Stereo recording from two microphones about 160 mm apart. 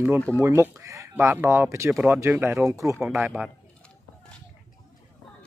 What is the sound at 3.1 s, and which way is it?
Speech, 5° right (ahead or behind).